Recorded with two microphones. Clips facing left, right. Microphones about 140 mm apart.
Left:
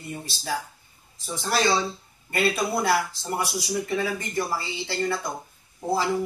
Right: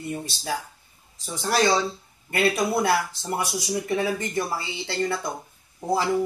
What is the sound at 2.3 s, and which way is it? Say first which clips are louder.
Speech: right 2 dB; 15° right (ahead or behind).